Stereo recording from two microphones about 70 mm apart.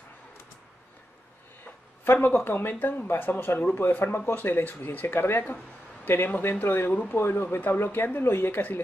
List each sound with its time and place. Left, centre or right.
2.2 s speech: left